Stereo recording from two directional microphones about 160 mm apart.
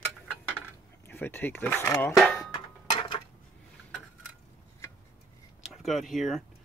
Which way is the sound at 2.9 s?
40° left (ahead or behind).